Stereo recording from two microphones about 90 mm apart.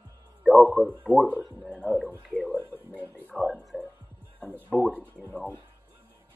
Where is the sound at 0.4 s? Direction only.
Centre (ahead or behind).